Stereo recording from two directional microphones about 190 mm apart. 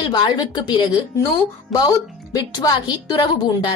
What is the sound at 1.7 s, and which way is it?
A woman's voice, 20° left (ahead or behind).